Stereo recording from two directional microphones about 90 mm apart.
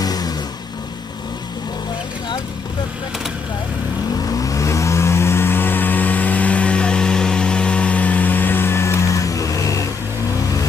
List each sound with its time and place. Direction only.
0.0 s vehicle: 45° left (ahead or behind)
4.3 s vehicle: 40° left (ahead or behind)